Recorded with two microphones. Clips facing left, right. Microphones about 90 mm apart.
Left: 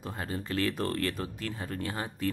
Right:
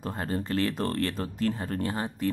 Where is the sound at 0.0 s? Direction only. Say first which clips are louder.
Right 5 dB; 40° right (ahead or behind).